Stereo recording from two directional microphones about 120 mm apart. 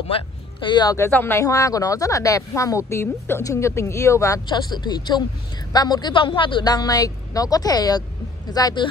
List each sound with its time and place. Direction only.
0.1 s speech: 40° left (ahead or behind)
0.9 s speech: 20° left (ahead or behind)
4.5 s a woman's voice: 35° left (ahead or behind)